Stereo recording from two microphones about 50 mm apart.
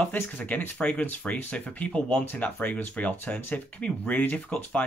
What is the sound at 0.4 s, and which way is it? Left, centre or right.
Speech, left.